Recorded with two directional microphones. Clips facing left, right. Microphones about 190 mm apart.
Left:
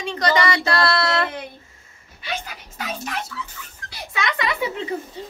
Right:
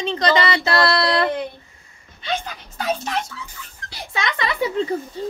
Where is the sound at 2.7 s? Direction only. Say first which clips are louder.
Right 6 dB; 30° right (ahead or behind).